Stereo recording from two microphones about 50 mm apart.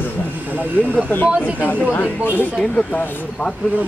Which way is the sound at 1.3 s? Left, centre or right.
Right.